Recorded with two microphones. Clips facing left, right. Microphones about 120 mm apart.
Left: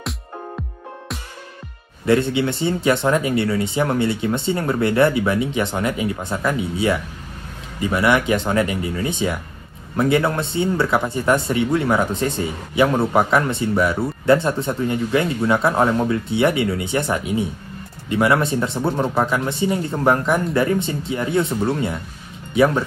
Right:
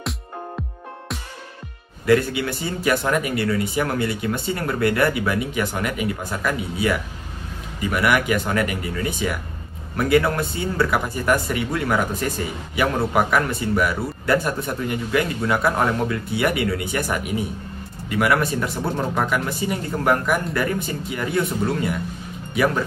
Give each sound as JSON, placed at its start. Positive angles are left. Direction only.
{"t": 2.0, "sound": "speech", "side_deg": 25}